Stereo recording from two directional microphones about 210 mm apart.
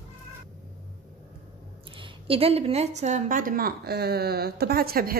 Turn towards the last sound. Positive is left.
turn(degrees=-45)  # may be behind; listen again after turning